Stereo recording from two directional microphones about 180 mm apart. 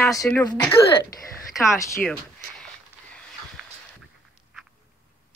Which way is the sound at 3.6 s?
5° right (ahead or behind).